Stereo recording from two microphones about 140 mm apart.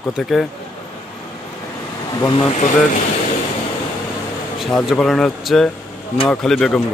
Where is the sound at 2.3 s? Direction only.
50° left (ahead or behind).